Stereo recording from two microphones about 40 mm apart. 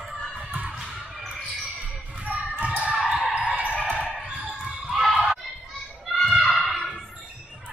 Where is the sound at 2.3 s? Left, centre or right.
Right.